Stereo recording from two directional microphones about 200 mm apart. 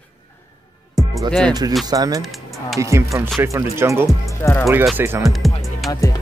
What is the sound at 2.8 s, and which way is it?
Music, 15° right (ahead or behind).